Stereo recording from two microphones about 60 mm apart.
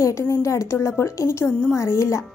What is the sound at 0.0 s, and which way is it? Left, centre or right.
A woman's voice, left.